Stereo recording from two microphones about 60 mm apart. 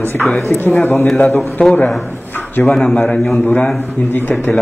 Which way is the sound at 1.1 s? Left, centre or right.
Left.